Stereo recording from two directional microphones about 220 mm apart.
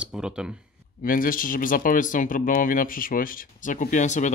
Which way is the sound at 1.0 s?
40° left (ahead or behind).